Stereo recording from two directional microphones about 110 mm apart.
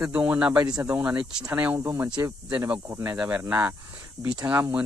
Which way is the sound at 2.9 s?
25° right (ahead or behind).